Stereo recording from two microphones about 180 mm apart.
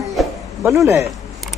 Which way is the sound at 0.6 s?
15° right (ahead or behind).